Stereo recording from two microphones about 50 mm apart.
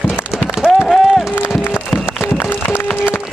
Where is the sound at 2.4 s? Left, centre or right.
Left.